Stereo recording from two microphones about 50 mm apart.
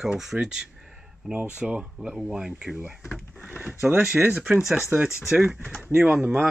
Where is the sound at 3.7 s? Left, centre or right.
Right.